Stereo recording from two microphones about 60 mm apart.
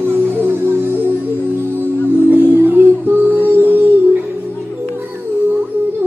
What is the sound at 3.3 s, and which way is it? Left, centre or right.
Music, left.